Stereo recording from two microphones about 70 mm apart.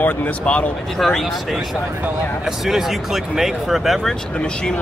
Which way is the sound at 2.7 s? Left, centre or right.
Centre.